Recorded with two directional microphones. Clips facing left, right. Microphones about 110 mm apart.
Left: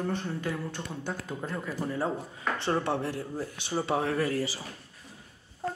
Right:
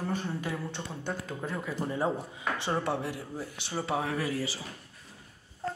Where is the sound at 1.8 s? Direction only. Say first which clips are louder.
Right 1 dB; 15° right (ahead or behind).